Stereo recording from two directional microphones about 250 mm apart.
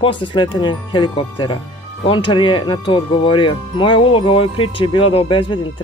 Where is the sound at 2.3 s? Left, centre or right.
Centre.